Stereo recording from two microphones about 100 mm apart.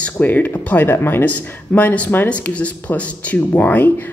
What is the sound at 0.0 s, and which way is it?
Speech, 15° left (ahead or behind).